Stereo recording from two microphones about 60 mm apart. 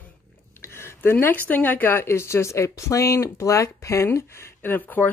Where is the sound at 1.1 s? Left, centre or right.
Left.